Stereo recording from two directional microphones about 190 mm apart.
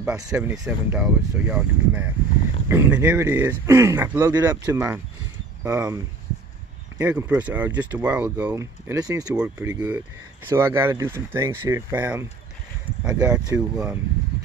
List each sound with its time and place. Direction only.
0.0 s speech: 5° right (ahead or behind)
7.0 s speech: 10° right (ahead or behind)
9.3 s speech: 10° right (ahead or behind)
13.6 s speech: 5° right (ahead or behind)